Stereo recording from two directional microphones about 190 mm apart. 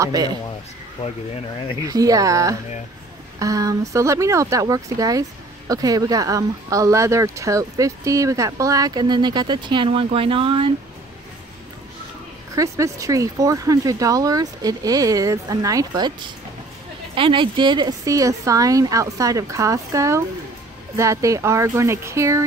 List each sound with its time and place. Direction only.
0.0 s speech: 20° right (ahead or behind)
1.0 s speech: 30° left (ahead or behind)
1.9 s speech: 20° right (ahead or behind)
12.5 s speech: 15° right (ahead or behind)
17.1 s speech: 25° right (ahead or behind)